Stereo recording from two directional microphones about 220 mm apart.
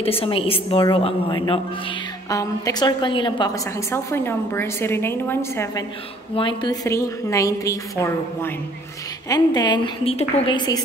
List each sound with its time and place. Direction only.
0.0 s a woman's voice: 25° left (ahead or behind)
6.3 s a woman's voice: 20° left (ahead or behind)